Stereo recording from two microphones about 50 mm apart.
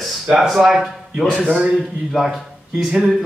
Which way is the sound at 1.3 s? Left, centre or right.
Right.